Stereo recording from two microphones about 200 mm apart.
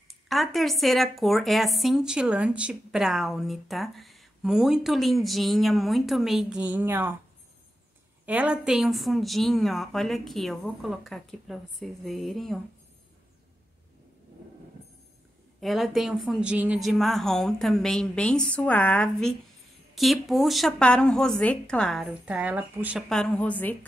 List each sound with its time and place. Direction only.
0.1 s a woman's voice: centre (ahead or behind)
8.3 s a woman's voice: 5° right (ahead or behind)
15.6 s a woman's voice: centre (ahead or behind)